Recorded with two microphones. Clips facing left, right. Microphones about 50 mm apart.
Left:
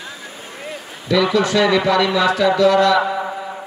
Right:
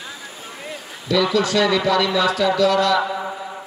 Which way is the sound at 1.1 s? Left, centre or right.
Left.